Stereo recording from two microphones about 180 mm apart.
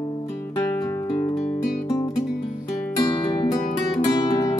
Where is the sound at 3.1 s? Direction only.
30° left (ahead or behind).